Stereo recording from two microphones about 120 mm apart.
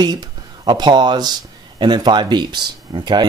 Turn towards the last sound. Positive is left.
turn(degrees=-35)  # may be behind; listen again after turning